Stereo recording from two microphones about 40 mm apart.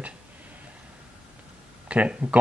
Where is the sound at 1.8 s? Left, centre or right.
Right.